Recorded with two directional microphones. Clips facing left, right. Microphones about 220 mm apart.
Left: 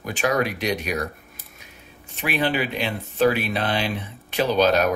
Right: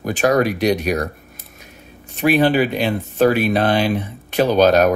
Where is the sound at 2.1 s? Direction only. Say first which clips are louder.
Right 9 dB; 40° right (ahead or behind).